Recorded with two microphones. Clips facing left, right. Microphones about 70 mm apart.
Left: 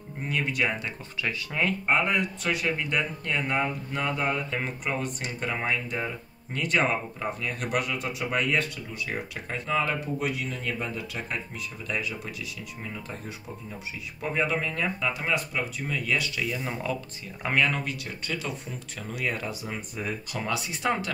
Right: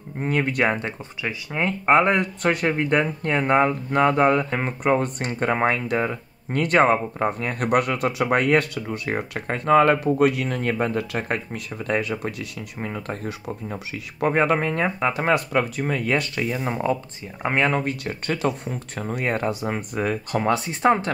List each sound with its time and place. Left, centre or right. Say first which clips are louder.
0.2 s speech: right 6 dB; right
1.2 s speech: right 3 dB; right
1.9 s speech: right 11 dB; right
4.6 s speech: right 9 dB; right
16.6 s speech: right 7 dB; right
18.0 s speech: right 9 dB; right
18.7 s speech: right 8 dB; right